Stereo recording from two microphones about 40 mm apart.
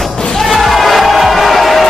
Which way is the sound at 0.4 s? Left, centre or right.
Centre.